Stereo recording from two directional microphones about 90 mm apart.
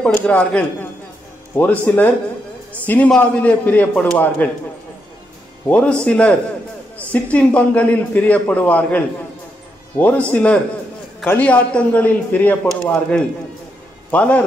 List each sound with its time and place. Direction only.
0.0 s a man's voice: 15° left (ahead or behind)
5.7 s a man's voice: 15° left (ahead or behind)
14.1 s a man's voice: 15° left (ahead or behind)